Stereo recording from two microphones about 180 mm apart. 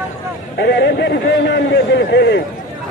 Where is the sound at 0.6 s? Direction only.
70° left (ahead or behind).